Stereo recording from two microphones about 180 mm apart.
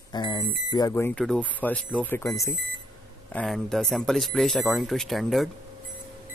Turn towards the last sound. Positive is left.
turn(degrees=0)  # may be behind; listen again after turning